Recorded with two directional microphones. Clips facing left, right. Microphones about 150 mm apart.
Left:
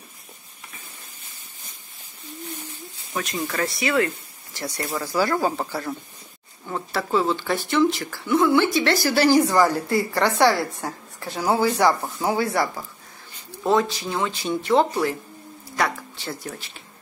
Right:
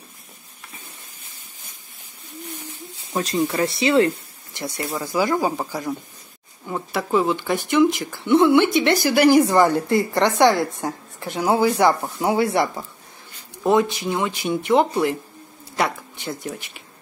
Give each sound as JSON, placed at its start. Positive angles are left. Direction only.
{"t": 3.1, "sound": "speech", "side_deg": -30}